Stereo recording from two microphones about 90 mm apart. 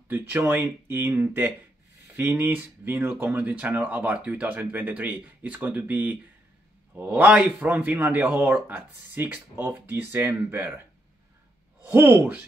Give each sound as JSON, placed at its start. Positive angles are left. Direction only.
{"t": 0.1, "sound": "speech", "side_deg": -25}
{"t": 11.8, "sound": "speech", "side_deg": -25}